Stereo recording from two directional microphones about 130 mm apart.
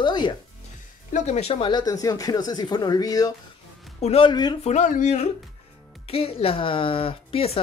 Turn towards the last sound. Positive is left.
turn(degrees=50)  # may be behind; listen again after turning